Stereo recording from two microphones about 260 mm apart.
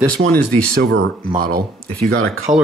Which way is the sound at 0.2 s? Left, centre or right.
Right.